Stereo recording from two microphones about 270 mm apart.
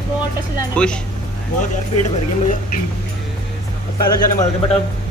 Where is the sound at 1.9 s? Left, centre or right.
Left.